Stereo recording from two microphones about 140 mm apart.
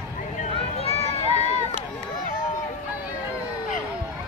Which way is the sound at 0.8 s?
45° left (ahead or behind).